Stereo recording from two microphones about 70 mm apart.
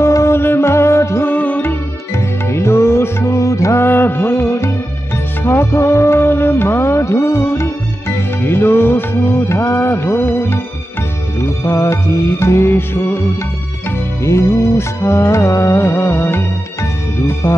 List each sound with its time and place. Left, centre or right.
0.0 s music: left
1.3 s music: left
3.8 s music: left
14.2 s music: left